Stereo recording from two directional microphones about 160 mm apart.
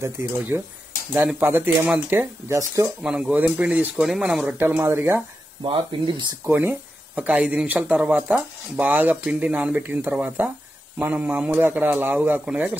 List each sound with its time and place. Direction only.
1.1 s speech: 15° right (ahead or behind)
3.0 s speech: 5° right (ahead or behind)
5.6 s speech: 30° right (ahead or behind)
6.4 s speech: 15° right (ahead or behind)